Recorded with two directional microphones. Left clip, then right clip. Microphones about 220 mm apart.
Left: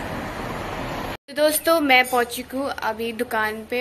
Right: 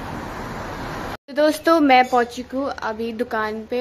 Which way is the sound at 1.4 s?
30° right (ahead or behind).